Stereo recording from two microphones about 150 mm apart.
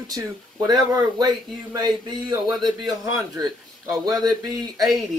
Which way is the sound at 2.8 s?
20° right (ahead or behind).